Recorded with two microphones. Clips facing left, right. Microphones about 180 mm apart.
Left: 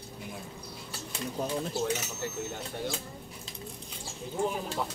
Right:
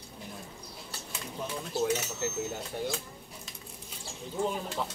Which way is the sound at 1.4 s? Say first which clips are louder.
Left 5 dB; 40° left (ahead or behind).